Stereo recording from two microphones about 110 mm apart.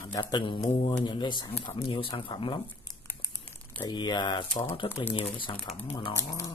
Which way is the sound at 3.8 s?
40° left (ahead or behind).